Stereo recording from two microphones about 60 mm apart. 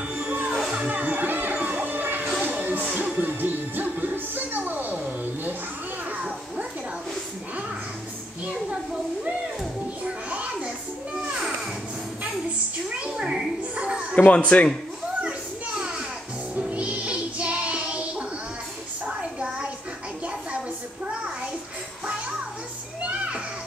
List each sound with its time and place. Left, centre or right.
0.2 s music: right
10.0 s children playing: centre
13.0 s a sound: centre
14.1 s speech: left
16.5 s music: right
19.0 s a sound: centre
23.0 s children playing: right